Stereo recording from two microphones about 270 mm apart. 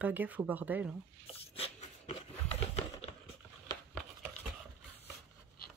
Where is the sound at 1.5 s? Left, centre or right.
Left.